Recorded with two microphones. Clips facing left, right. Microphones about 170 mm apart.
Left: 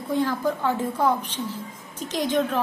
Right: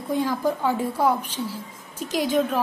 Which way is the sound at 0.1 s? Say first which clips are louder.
Even; 10° right (ahead or behind).